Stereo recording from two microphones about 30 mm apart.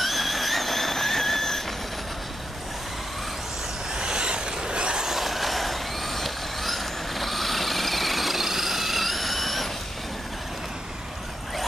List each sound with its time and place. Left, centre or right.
0.0 s a sound: centre
3.9 s vehicle: right
5.0 s vehicle: centre